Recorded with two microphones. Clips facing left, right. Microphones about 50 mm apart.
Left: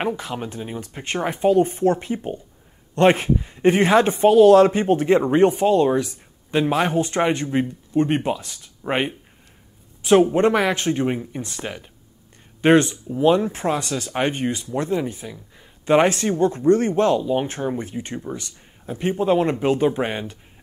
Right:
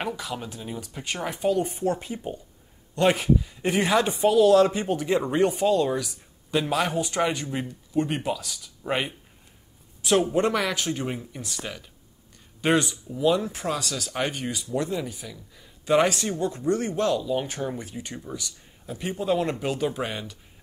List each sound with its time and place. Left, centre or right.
0.0 s speech: left
2.1 s speech: left
10.3 s speech: left